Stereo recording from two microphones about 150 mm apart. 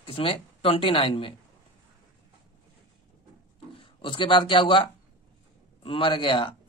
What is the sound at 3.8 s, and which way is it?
Speech, 35° left (ahead or behind).